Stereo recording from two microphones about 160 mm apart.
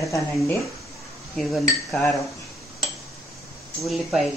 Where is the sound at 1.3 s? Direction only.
Centre (ahead or behind).